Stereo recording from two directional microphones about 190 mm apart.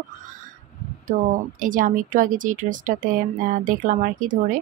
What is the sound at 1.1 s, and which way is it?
Speech, 35° right (ahead or behind).